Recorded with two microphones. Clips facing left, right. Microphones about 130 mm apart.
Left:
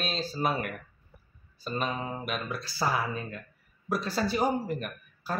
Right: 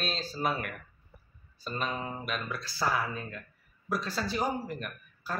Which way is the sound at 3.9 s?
10° left (ahead or behind).